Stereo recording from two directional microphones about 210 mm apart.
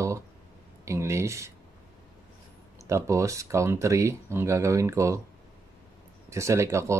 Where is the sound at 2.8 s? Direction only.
15° right (ahead or behind).